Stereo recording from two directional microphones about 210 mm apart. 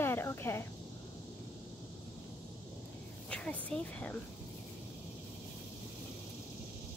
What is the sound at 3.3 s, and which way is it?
Speech, 5° left (ahead or behind).